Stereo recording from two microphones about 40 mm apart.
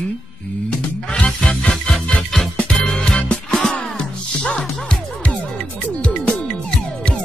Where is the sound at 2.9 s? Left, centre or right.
Centre.